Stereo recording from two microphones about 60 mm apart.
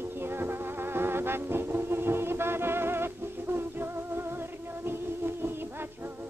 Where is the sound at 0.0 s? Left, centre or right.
Right.